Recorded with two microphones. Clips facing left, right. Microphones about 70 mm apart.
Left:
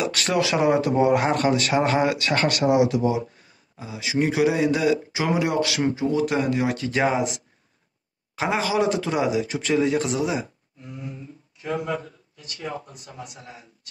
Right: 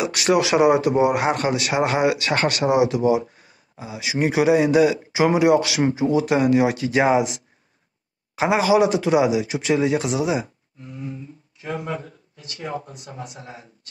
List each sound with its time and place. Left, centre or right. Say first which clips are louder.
0.0 s speech: right 4 dB; centre
8.4 s speech: right 6 dB; centre
11.6 s speech: left 1 dB; right